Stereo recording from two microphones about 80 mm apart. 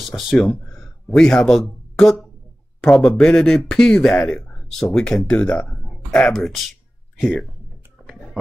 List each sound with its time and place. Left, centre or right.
0.1 s speech: centre
8.0 s music: left